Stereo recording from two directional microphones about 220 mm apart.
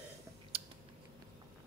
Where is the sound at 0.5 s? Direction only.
25° right (ahead or behind).